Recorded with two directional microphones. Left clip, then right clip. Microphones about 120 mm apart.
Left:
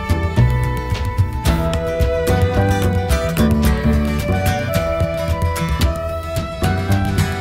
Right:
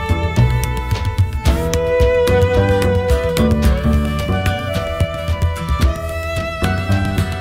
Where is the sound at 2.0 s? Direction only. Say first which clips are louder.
Right 5 dB; centre (ahead or behind).